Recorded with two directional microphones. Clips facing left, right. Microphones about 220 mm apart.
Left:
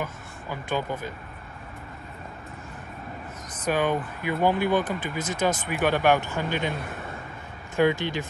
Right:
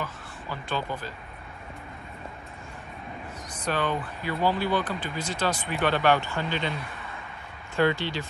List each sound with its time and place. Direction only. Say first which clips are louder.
0.0 s a sound: left 2 dB; 15° left (ahead or behind)
3.5 s speech: left 4 dB; 15° left (ahead or behind)
4.8 s speech: left 2 dB; 45° left (ahead or behind)
5.7 s speech: even; 15° left (ahead or behind)
7.9 s speech: left 2 dB; 50° left (ahead or behind)